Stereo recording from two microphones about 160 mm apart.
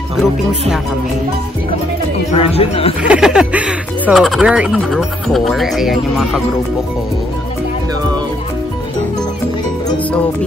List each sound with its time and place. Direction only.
0.2 s speech: 5° right (ahead or behind)
2.3 s speech: 40° left (ahead or behind)
3.0 s speech: 5° right (ahead or behind)